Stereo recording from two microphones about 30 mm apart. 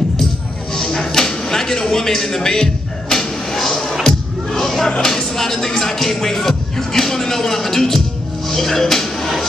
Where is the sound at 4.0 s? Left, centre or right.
Centre.